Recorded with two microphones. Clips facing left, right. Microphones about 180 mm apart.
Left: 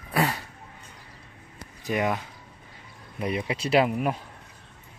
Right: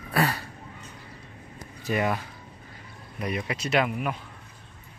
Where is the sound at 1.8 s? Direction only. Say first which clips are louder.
Even; 15° left (ahead or behind).